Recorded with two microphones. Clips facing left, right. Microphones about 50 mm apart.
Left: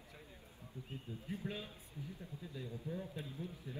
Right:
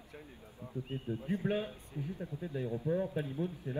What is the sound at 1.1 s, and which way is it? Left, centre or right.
Speech, right.